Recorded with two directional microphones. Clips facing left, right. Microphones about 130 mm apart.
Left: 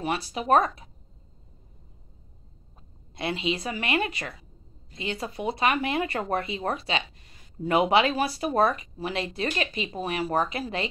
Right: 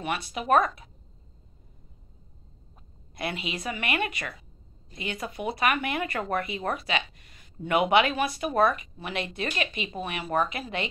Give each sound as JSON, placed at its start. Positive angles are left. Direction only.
{"t": 0.0, "sound": "speech", "side_deg": 30}
{"t": 3.2, "sound": "speech", "side_deg": 30}